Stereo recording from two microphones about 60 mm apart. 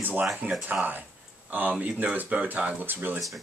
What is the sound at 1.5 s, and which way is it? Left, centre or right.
Speech, right.